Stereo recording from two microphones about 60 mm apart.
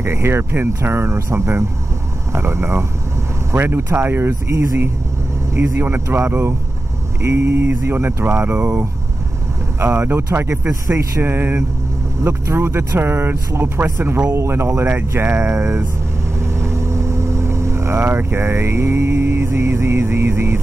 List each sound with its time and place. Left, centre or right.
0.0 s speech: right
5.5 s speech: right
14.3 s speech: right
16.5 s vehicle: right
18.1 s speech: right